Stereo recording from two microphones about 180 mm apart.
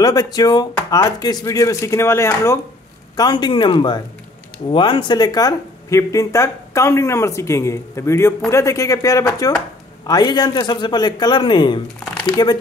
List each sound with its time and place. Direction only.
0.0 s speech: 20° left (ahead or behind)